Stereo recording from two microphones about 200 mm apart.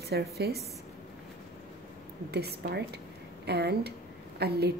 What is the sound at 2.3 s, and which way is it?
A woman's voice, 55° right (ahead or behind).